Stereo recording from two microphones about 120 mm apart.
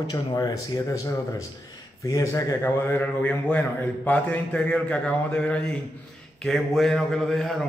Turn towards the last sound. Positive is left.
turn(degrees=5)  # may be behind; listen again after turning